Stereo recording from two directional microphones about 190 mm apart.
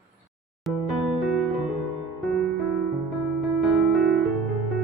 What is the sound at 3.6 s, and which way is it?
Music, centre (ahead or behind).